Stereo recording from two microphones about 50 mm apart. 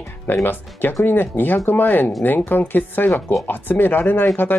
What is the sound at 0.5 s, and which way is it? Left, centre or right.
Speech, left.